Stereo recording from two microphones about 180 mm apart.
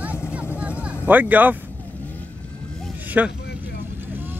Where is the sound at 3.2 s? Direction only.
5° right (ahead or behind).